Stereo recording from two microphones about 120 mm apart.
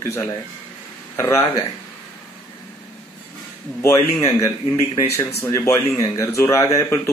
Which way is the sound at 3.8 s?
25° left (ahead or behind).